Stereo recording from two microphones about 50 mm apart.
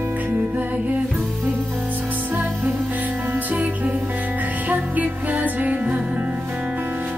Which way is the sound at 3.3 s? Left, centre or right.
Right.